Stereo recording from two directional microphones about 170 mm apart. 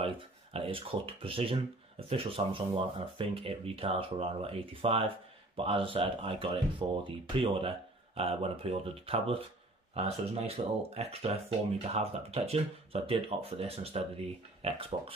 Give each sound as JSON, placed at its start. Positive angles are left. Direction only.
{"t": 0.0, "sound": "speech", "side_deg": -30}